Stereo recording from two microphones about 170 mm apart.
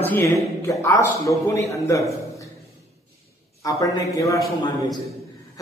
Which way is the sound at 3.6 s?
20° left (ahead or behind).